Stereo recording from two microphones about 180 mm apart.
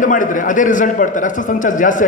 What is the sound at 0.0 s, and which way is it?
A man's voice, 45° left (ahead or behind).